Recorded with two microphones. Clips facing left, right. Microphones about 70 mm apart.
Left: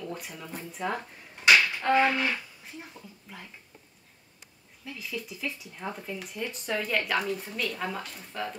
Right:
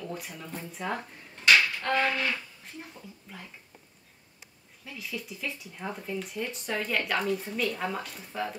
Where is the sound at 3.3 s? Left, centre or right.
Centre.